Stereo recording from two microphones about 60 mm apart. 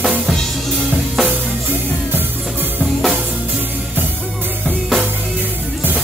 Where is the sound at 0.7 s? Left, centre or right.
Centre.